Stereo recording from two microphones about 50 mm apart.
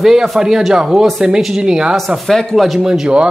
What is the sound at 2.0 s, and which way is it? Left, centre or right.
Speech, centre.